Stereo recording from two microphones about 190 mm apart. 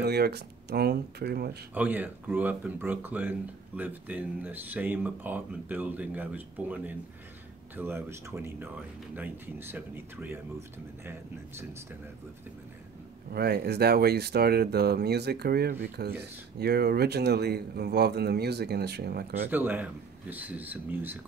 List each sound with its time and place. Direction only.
0.0 s speech: 60° right (ahead or behind)
1.7 s speech: 10° right (ahead or behind)
13.3 s speech: 55° right (ahead or behind)
19.5 s speech: 10° right (ahead or behind)